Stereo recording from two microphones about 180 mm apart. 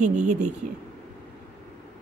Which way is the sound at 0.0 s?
40° right (ahead or behind).